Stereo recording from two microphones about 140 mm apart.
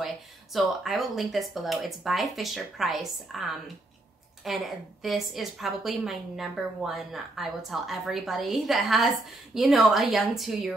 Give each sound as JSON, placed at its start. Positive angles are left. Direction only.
{"t": 0.0, "sound": "a woman's voice", "side_deg": 0}